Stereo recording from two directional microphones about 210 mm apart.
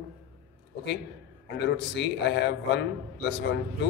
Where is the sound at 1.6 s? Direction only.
55° left (ahead or behind).